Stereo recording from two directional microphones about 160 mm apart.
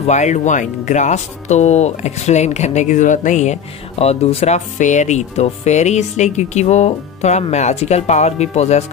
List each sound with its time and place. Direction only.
0.0 s speech: 45° left (ahead or behind)